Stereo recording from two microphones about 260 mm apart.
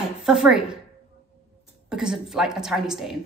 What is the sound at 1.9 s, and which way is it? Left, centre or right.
Speech, centre.